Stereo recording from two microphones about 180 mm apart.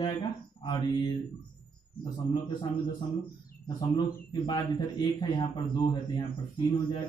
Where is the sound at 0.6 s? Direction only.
25° left (ahead or behind).